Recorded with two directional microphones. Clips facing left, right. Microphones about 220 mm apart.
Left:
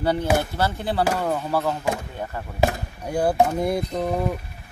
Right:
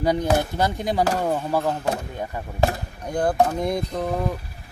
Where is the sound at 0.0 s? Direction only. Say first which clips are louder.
Right 1 dB; 15° right (ahead or behind).